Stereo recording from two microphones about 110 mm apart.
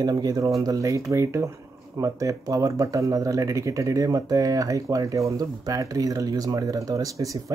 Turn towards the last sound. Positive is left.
turn(degrees=-30)  # may be behind; listen again after turning